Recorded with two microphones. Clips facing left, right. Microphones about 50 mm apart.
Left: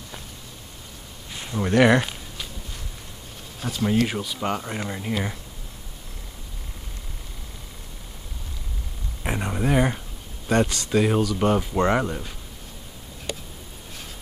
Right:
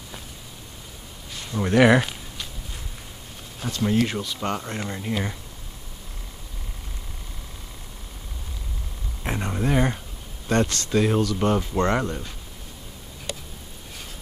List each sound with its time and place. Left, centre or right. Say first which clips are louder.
1.3 s a sound: left 1 dB; centre
1.6 s speech: right 1 dB; centre
3.6 s speech: even; centre
9.2 s speech: left 1 dB; centre